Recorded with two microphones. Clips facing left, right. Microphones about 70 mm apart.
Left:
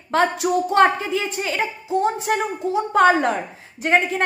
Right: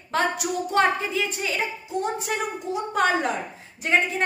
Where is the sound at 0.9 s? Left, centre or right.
Left.